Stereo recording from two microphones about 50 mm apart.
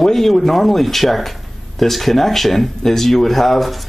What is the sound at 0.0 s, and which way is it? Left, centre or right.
Speech, centre.